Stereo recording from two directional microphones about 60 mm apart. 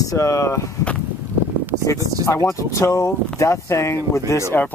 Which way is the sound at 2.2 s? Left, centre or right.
Left.